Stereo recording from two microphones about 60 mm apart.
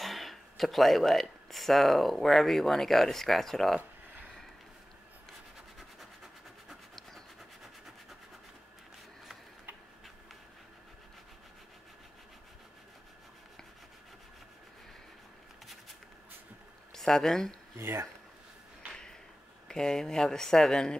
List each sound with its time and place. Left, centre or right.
0.0 s speech: centre
7.0 s train: centre
16.9 s speech: centre
17.7 s speech: right
18.9 s a sound: centre
19.7 s speech: centre